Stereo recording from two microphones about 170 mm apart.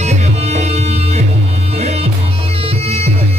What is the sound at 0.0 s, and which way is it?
Music, 40° right (ahead or behind).